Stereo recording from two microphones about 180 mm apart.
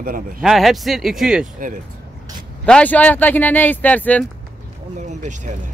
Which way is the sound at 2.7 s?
10° left (ahead or behind).